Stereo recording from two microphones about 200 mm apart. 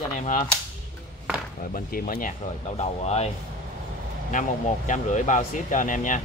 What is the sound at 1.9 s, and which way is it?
Speech, 45° left (ahead or behind).